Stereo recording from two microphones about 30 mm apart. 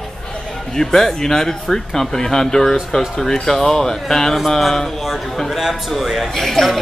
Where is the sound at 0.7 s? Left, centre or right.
Centre.